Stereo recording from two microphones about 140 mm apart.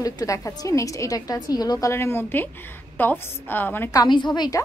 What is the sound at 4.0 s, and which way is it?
Speech, 30° left (ahead or behind).